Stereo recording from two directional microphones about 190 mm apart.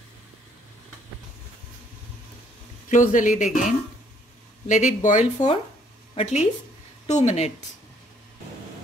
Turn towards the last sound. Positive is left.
turn(degrees=35)  # may be behind; listen again after turning